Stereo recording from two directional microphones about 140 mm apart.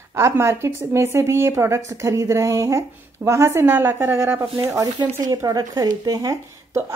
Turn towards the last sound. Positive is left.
turn(degrees=-25)  # may be behind; listen again after turning